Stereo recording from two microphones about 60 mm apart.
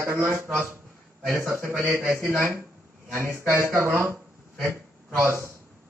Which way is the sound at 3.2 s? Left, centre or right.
Right.